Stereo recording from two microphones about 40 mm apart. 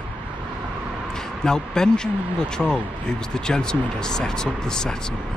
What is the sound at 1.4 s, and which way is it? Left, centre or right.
Speech, centre.